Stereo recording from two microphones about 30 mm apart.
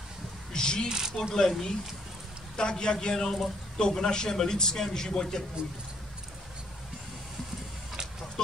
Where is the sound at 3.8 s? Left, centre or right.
Left.